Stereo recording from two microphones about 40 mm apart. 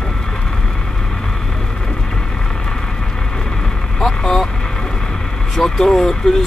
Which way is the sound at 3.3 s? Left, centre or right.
Centre.